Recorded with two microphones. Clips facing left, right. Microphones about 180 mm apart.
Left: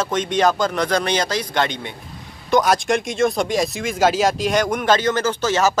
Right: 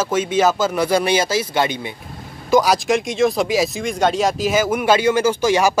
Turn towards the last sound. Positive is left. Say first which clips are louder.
# right 3 dB
turn(degrees=-10)  # may be behind; listen again after turning